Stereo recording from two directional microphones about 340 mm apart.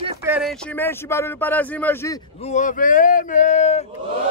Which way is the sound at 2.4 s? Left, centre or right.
Left.